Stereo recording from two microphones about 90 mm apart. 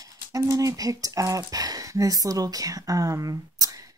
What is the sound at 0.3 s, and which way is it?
Speech, 40° right (ahead or behind).